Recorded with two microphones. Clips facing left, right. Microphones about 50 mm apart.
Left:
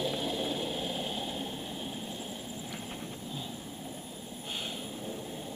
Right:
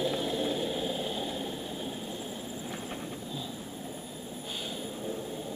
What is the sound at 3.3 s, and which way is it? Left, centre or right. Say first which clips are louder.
Vehicle: right 2 dB; left.